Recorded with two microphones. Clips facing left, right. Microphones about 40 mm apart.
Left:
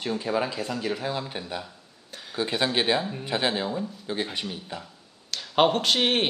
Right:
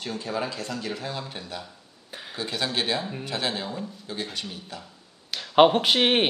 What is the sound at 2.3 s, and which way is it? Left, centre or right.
Speech, centre.